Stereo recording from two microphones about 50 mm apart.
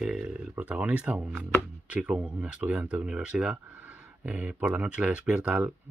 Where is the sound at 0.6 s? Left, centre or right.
Right.